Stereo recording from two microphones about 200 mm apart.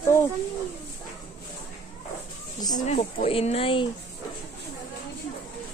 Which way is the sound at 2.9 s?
35° left (ahead or behind).